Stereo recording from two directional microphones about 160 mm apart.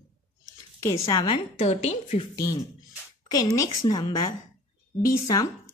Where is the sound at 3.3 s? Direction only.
20° left (ahead or behind).